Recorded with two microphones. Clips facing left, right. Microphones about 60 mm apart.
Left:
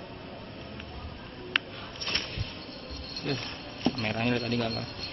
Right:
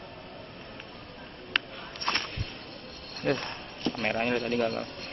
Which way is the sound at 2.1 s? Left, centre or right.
Right.